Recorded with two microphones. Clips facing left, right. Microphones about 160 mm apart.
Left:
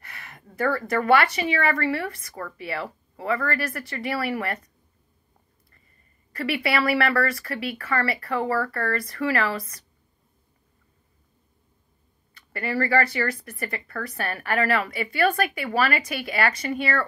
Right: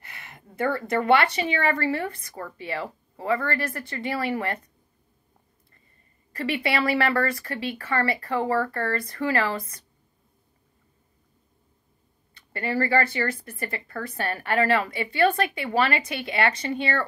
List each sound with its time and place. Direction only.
0.0 s a sound: 25° right (ahead or behind)
0.6 s speech: 25° right (ahead or behind)
6.3 s speech: 30° right (ahead or behind)
12.4 s speech: 30° right (ahead or behind)